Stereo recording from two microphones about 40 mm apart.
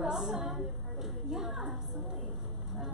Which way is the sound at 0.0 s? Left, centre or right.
Centre.